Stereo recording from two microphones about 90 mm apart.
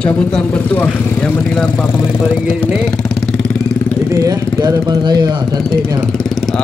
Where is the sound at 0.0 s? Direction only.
15° left (ahead or behind).